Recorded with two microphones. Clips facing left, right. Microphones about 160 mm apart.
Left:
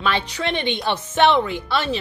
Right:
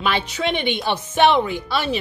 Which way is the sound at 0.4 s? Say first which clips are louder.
Right 1 dB; 10° right (ahead or behind).